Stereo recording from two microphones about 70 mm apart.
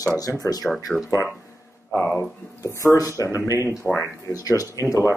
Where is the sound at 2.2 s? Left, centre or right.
Left.